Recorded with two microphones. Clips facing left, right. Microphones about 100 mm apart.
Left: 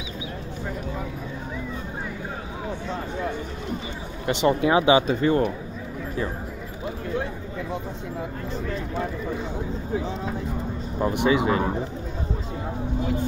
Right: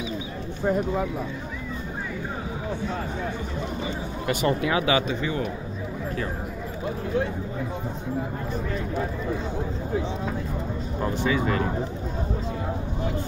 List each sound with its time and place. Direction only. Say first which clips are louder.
4.3 s speech: left 4 dB; 25° left (ahead or behind)
5.0 s speech: left 6 dB; 45° left (ahead or behind)
11.0 s speech: left 4 dB; 20° left (ahead or behind)